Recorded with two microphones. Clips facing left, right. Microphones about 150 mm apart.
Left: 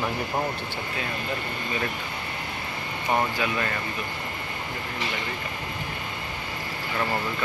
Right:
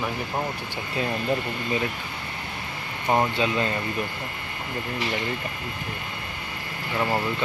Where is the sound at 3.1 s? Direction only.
25° right (ahead or behind).